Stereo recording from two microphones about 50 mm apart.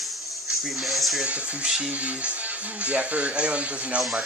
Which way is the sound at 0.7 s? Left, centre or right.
Centre.